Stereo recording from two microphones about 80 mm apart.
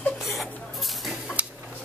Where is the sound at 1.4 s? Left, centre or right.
Centre.